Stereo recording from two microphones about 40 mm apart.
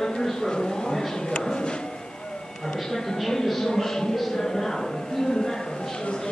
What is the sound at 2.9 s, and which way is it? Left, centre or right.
A woman's voice, centre.